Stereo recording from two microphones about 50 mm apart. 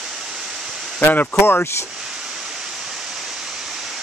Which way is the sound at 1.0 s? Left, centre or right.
Left.